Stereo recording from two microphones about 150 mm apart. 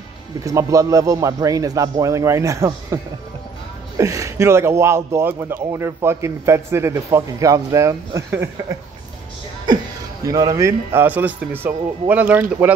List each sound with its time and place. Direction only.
0.5 s a man's voice: 20° right (ahead or behind)
4.0 s speech: 20° right (ahead or behind)
10.2 s speech: 25° right (ahead or behind)